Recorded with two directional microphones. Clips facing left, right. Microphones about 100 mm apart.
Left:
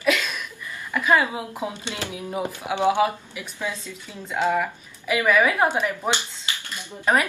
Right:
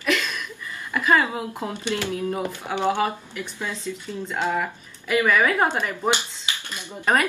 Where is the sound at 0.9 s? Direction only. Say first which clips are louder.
Even; 10° left (ahead or behind).